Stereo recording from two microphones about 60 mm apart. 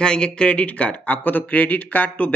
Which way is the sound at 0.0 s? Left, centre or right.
Centre.